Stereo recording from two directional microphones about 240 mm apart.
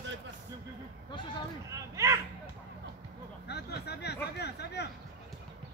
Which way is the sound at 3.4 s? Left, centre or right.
Left.